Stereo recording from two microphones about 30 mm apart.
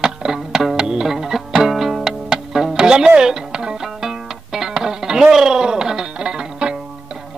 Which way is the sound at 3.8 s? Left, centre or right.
Centre.